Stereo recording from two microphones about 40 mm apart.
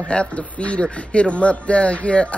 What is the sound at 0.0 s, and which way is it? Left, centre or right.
A man's voice, left.